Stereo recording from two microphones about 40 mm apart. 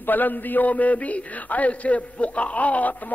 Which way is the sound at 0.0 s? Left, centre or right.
Left.